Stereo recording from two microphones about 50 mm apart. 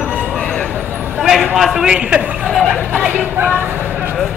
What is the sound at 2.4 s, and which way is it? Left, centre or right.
Speech, centre.